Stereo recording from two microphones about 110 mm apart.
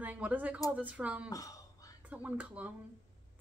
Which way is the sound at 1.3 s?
30° left (ahead or behind).